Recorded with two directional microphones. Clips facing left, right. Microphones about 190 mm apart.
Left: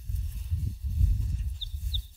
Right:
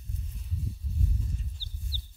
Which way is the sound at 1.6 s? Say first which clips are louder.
Right 3 dB; 20° left (ahead or behind).